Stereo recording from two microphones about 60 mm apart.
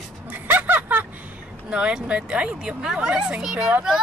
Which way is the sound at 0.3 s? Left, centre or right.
Right.